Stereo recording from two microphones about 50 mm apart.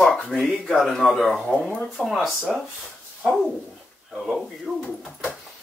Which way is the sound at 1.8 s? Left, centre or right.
Centre.